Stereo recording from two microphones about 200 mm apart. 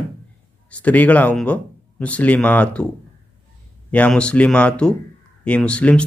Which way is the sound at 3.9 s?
5° left (ahead or behind).